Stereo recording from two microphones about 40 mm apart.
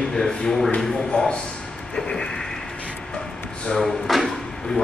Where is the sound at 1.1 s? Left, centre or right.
Left.